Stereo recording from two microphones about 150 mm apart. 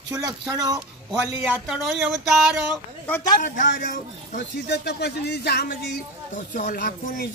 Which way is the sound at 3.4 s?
65° left (ahead or behind).